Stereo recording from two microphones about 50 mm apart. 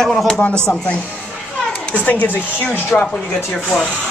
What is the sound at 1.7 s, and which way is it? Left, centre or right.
A child's voice, left.